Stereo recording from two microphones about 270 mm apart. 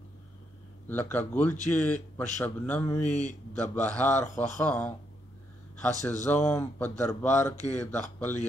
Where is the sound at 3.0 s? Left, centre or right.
Left.